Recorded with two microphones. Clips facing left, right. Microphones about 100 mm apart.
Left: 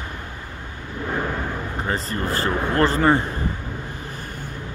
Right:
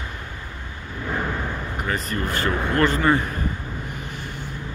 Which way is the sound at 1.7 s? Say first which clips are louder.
Even; 30° left (ahead or behind).